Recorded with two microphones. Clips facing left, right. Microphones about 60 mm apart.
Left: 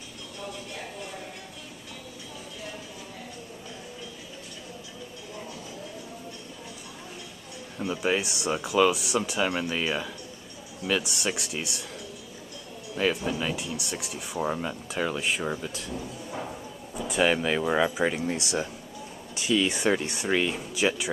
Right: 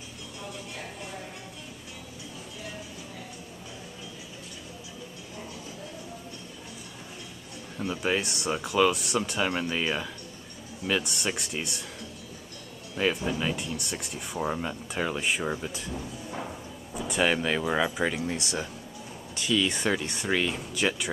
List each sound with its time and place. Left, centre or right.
8.0 s speech: centre
12.9 s speech: centre